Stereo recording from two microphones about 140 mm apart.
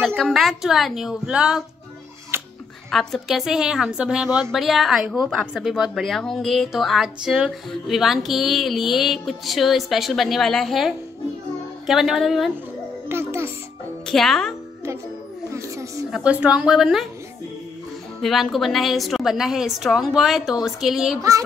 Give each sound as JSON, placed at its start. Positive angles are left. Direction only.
{"t": 0.0, "sound": "a woman's voice", "side_deg": 5}
{"t": 2.3, "sound": "music", "side_deg": -15}
{"t": 2.9, "sound": "a woman's voice", "side_deg": 0}
{"t": 13.1, "sound": "a child's voice", "side_deg": -15}
{"t": 14.0, "sound": "a woman's voice", "side_deg": 5}
{"t": 15.5, "sound": "speech", "side_deg": -20}
{"t": 16.1, "sound": "a woman's voice", "side_deg": -10}
{"t": 18.2, "sound": "a woman's voice", "side_deg": 0}
{"t": 21.2, "sound": "a child's voice", "side_deg": -25}